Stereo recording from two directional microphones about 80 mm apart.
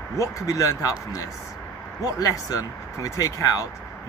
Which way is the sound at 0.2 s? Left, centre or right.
Left.